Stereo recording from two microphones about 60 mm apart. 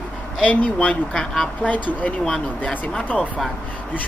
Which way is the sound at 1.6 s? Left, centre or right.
Left.